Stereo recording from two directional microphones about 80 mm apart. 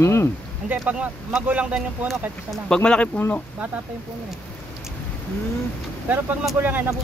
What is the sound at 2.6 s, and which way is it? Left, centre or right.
Speech, centre.